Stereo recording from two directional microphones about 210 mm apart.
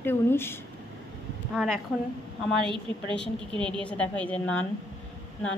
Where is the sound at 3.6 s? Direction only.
5° left (ahead or behind).